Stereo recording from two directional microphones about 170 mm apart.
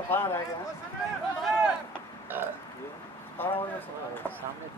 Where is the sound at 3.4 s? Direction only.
10° left (ahead or behind).